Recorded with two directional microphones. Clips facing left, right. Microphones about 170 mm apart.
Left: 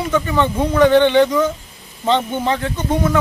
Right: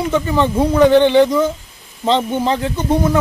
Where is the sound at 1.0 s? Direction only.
35° right (ahead or behind).